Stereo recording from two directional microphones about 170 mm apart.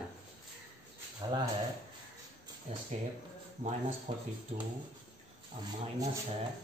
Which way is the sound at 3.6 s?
45° right (ahead or behind).